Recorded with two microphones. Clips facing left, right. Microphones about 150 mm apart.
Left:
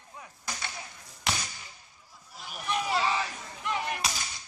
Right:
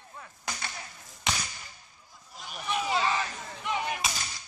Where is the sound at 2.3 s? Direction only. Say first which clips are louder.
Even; 5° left (ahead or behind).